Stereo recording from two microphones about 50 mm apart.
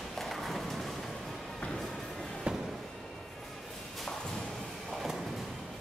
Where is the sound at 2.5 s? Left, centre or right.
Centre.